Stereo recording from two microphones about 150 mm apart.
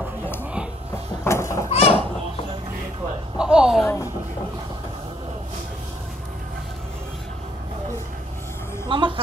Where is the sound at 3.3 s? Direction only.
5° right (ahead or behind).